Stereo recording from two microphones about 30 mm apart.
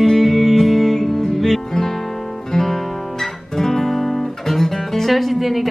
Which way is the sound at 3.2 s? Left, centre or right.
Centre.